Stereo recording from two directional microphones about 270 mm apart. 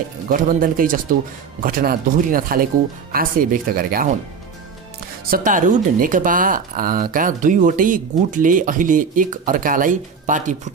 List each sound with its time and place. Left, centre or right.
0.3 s speech: right
5.3 s speech: right